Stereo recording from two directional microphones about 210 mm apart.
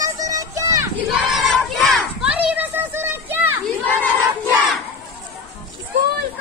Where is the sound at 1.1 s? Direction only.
Centre (ahead or behind).